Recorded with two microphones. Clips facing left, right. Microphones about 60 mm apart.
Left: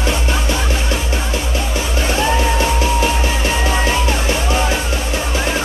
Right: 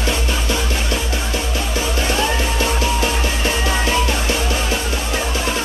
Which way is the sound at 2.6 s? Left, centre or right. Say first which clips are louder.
Left 3 dB; left.